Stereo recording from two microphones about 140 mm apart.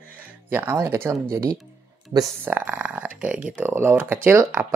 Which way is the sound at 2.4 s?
10° right (ahead or behind).